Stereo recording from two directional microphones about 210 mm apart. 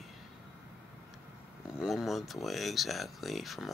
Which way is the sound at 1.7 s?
Centre (ahead or behind).